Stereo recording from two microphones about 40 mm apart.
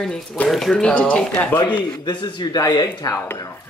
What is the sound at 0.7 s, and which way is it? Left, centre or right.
Speech, left.